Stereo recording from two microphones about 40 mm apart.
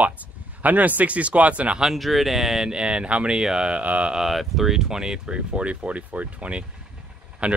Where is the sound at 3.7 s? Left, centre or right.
Right.